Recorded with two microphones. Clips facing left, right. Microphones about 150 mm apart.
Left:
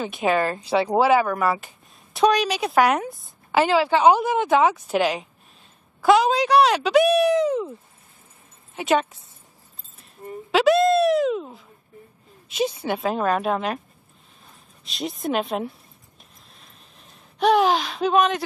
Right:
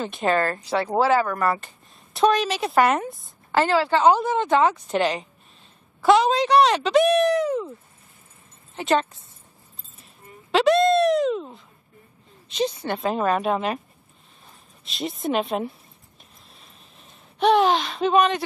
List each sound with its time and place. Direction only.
0.0 s speech: 5° left (ahead or behind)
3.5 s speech: 15° left (ahead or behind)
7.3 s a sound: 20° left (ahead or behind)
8.7 s speech: centre (ahead or behind)
10.5 s speech: 5° left (ahead or behind)
14.9 s speech: centre (ahead or behind)
17.0 s speech: centre (ahead or behind)